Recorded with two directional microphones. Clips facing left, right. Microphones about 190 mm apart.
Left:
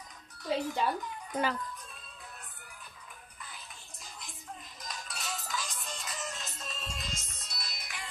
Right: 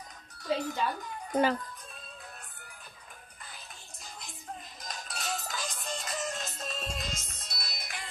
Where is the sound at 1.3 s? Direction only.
30° right (ahead or behind).